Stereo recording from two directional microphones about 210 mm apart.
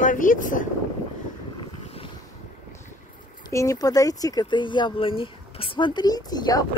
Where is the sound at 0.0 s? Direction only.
40° left (ahead or behind).